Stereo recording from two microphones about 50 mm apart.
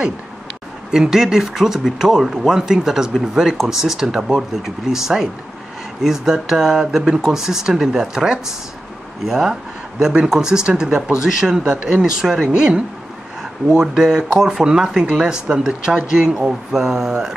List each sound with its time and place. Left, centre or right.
0.9 s speech: centre